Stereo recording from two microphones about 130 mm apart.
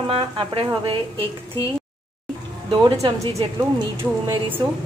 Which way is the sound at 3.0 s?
40° right (ahead or behind).